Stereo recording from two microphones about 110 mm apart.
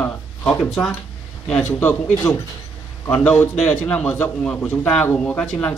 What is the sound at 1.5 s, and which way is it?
Speech, 15° left (ahead or behind).